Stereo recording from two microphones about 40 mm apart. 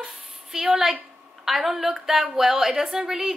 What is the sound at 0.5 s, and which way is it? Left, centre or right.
A woman's voice, centre.